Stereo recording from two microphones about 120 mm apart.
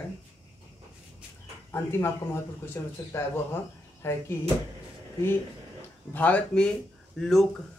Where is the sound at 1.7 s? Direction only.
20° left (ahead or behind).